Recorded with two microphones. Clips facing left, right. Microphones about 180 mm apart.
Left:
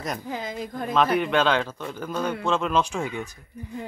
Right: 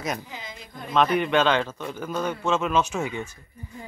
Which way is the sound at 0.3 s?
50° left (ahead or behind).